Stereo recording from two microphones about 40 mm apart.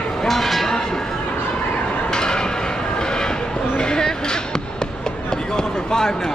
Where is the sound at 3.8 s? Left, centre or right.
Centre.